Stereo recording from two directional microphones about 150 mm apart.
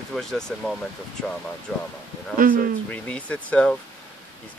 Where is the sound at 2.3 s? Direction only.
70° right (ahead or behind).